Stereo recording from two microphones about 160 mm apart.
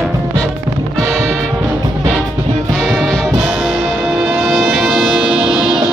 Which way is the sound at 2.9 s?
Centre (ahead or behind).